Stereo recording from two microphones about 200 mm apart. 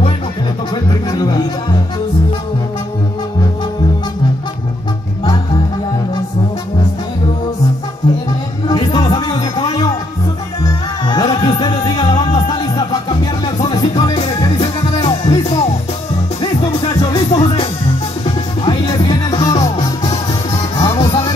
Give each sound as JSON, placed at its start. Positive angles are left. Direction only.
{"t": 0.8, "sound": "music", "side_deg": 20}
{"t": 8.6, "sound": "music", "side_deg": 20}
{"t": 14.2, "sound": "music", "side_deg": 30}
{"t": 17.1, "sound": "music", "side_deg": 20}
{"t": 18.7, "sound": "music", "side_deg": 20}